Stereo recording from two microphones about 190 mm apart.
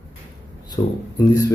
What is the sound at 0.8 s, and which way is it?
Speech, 25° left (ahead or behind).